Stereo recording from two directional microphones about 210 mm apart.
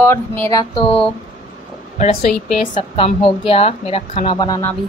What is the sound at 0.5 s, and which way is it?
Speech, 20° left (ahead or behind).